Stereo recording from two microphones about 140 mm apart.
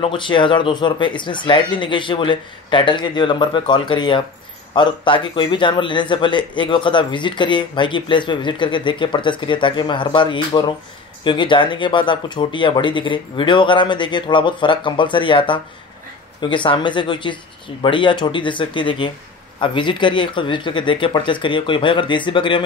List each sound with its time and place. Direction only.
0.0 s a man's voice: 35° left (ahead or behind)